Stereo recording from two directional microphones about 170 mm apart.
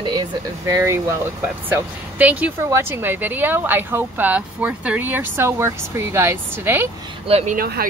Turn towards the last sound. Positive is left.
turn(degrees=-60)  # may be behind; listen again after turning